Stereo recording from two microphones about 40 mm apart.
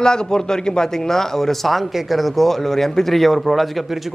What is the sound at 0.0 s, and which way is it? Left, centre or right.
Speech, centre.